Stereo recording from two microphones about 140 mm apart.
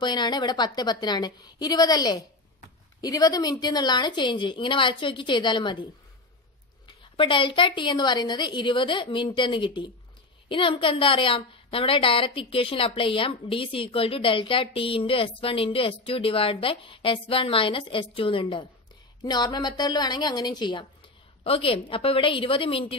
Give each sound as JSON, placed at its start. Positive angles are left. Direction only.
{"t": 0.0, "sound": "a woman's voice", "side_deg": 30}
{"t": 6.9, "sound": "a woman's voice", "side_deg": 35}